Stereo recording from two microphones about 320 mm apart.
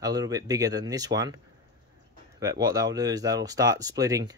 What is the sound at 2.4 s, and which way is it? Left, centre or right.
Speech, centre.